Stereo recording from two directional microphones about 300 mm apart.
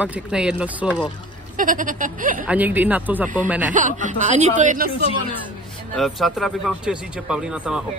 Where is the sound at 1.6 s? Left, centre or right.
Right.